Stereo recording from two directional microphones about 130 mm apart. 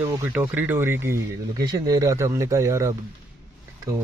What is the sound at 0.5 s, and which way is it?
Speech, 15° right (ahead or behind).